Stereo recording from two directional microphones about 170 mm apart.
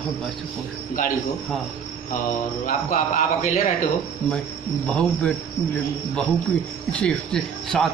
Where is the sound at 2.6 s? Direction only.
50° left (ahead or behind).